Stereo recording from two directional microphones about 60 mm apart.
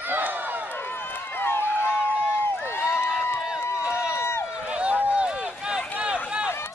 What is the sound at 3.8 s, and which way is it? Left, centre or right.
Run, centre.